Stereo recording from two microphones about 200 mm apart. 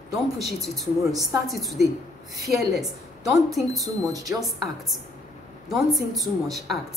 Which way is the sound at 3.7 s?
15° right (ahead or behind).